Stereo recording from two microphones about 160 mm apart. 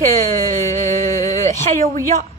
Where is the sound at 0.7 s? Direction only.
50° right (ahead or behind).